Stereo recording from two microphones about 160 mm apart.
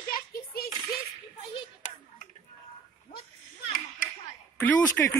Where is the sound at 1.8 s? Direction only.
50° left (ahead or behind).